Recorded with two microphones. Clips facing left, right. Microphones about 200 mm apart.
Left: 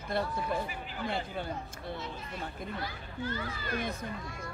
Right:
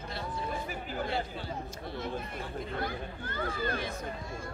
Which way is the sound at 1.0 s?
55° left (ahead or behind).